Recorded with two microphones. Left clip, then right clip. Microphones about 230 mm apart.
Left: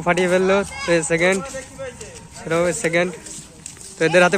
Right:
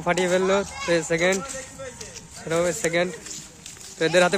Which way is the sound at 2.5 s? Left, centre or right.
Centre.